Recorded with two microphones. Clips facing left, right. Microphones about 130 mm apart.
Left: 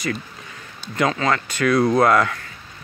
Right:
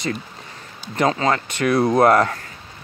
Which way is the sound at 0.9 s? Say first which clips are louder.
Right 1 dB; 25° right (ahead or behind).